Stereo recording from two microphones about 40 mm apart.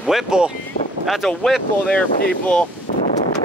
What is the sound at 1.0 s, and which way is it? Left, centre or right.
Speech, centre.